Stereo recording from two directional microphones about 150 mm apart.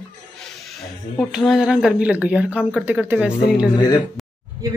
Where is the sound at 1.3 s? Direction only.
5° right (ahead or behind).